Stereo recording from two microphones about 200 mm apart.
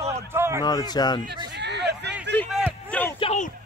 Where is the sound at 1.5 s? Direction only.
60° right (ahead or behind).